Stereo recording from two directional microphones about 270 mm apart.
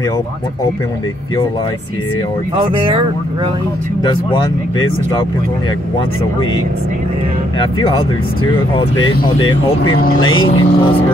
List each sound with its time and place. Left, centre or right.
2.5 s speech: centre
4.0 s speech: centre
8.7 s speech: centre
10.3 s speech: centre